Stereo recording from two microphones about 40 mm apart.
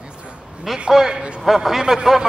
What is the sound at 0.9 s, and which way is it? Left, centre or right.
A man's voice, centre.